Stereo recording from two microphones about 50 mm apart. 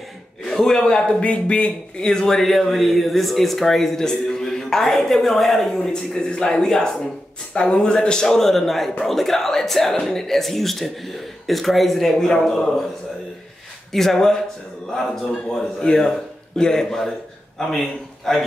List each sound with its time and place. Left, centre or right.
0.5 s speech: centre
8.3 s speech: centre
13.9 s a man's voice: centre